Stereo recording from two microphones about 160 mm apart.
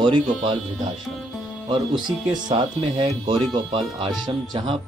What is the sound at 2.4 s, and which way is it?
Speech, 30° right (ahead or behind).